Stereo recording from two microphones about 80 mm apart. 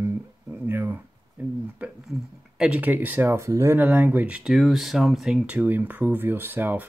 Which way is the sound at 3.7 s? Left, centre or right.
Right.